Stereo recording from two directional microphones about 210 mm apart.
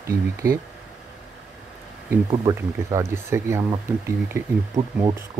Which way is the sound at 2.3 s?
15° right (ahead or behind).